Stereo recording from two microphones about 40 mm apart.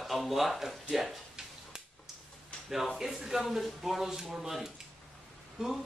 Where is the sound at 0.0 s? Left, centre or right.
Centre.